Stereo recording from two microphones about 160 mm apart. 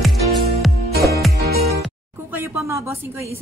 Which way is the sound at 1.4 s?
80° right.